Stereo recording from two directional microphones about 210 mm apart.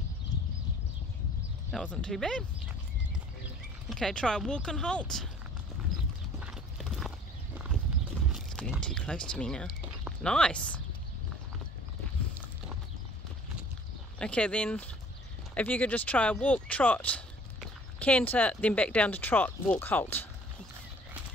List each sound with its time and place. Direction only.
1.7 s speech: 5° left (ahead or behind)
3.9 s speech: 5° left (ahead or behind)
6.4 s clip-clop: centre (ahead or behind)
8.3 s speech: centre (ahead or behind)
14.1 s speech: 5° left (ahead or behind)